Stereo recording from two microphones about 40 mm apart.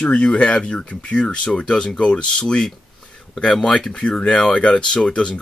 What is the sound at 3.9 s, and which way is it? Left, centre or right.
Speech, left.